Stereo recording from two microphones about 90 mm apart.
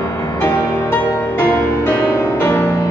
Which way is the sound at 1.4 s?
25° left (ahead or behind).